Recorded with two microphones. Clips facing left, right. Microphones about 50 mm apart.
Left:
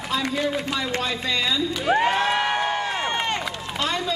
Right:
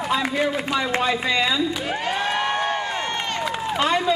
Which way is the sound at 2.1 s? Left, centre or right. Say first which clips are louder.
Left 1 dB; centre.